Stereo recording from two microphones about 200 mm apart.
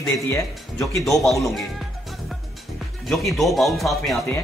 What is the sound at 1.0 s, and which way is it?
Speech, centre (ahead or behind).